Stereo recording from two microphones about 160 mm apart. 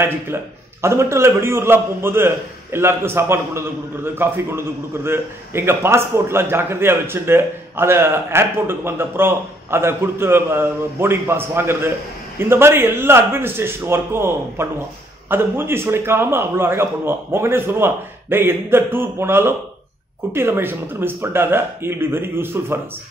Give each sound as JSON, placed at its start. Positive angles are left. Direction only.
{"t": 0.8, "sound": "a man's voice", "side_deg": -15}